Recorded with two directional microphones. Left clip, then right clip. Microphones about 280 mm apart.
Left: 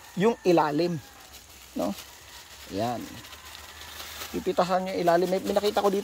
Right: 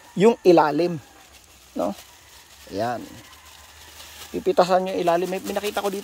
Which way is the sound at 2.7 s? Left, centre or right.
Centre.